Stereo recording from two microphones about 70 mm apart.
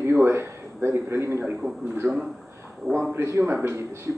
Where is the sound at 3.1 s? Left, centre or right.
Right.